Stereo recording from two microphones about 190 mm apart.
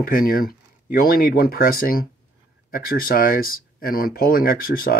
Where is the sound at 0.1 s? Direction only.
50° left (ahead or behind).